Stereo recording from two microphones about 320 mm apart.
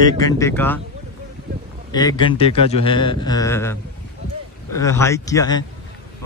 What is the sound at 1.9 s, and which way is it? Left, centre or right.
A man's voice, centre.